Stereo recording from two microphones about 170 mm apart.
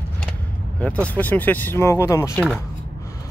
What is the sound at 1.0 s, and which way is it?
Speech, 10° left (ahead or behind).